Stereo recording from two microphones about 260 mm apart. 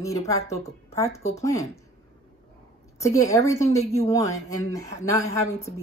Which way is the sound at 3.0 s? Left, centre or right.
Centre.